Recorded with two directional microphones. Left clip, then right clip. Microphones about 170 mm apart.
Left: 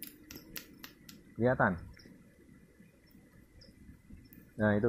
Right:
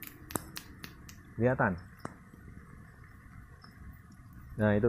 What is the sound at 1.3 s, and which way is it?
Speech, 45° right (ahead or behind).